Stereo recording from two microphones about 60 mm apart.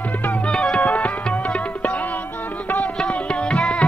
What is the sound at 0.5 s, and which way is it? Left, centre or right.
Music, centre.